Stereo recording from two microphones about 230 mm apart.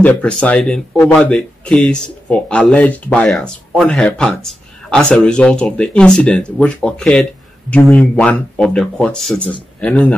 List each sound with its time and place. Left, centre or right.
0.0 s speech: centre